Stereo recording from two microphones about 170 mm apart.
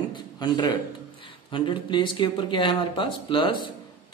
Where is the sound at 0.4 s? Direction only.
25° left (ahead or behind).